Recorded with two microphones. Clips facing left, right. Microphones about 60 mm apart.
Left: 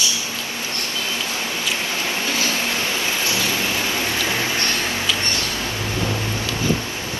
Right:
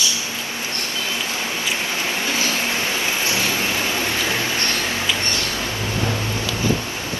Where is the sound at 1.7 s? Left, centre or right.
Right.